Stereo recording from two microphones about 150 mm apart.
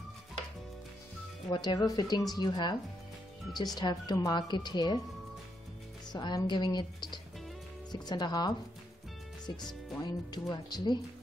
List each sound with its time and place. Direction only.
1.5 s speech: 30° left (ahead or behind)
6.1 s speech: 30° left (ahead or behind)
9.6 s speech: 30° left (ahead or behind)